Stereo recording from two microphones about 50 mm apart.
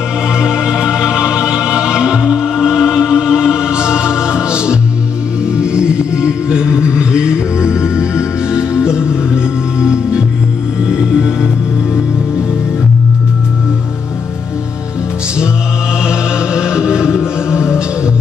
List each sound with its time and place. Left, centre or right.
0.4 s music: centre
16.1 s music: centre